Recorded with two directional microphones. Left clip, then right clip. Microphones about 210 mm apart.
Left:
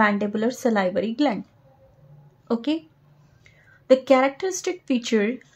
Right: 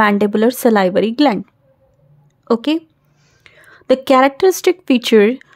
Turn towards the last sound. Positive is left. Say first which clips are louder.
# right 11 dB
turn(degrees=-50)  # may be behind; listen again after turning